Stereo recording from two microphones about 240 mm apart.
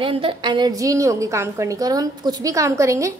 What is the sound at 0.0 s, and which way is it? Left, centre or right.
A woman's voice, right.